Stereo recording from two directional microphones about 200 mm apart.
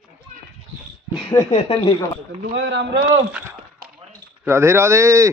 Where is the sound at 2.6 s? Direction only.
65° right (ahead or behind).